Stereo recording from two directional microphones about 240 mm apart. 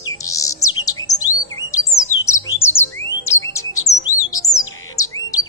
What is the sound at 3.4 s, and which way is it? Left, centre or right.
Bird, centre.